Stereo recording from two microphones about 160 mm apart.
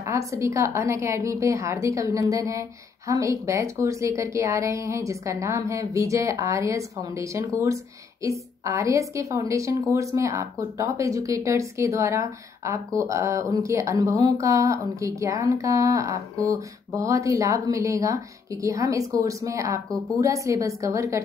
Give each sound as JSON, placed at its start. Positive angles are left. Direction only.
{"t": 0.0, "sound": "a woman's voice", "side_deg": -20}